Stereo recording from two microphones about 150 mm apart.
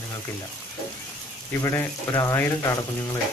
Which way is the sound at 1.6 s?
20° left (ahead or behind).